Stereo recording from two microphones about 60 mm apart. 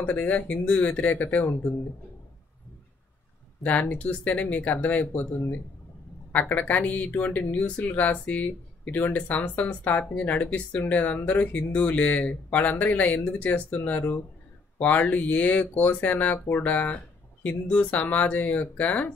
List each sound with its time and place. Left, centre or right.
0.0 s speech: left
3.6 s speech: left
6.3 s speech: left